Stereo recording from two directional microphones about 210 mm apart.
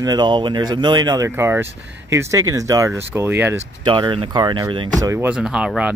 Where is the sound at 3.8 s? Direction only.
20° right (ahead or behind).